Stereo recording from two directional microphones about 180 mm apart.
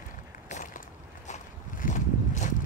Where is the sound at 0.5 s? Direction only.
45° left (ahead or behind).